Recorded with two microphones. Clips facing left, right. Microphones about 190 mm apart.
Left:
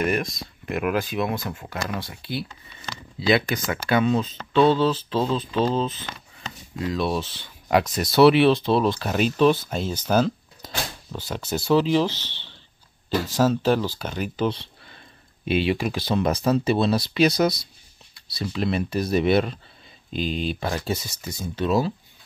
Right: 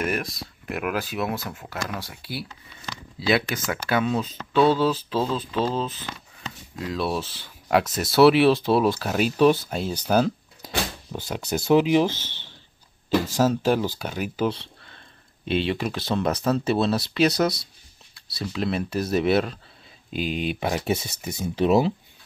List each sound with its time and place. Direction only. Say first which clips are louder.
0.0 s speech: left 3 dB; 5° right (ahead or behind)
12.1 s speech: right 2 dB; 45° right (ahead or behind)
13.3 s speech: left 3 dB; 10° right (ahead or behind)
15.4 s speech: left 2 dB; 5° left (ahead or behind); by 21.9 s 20° right (ahead or behind)